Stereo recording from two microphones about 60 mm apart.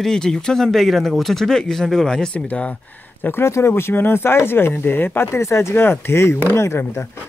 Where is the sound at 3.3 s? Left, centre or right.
Left.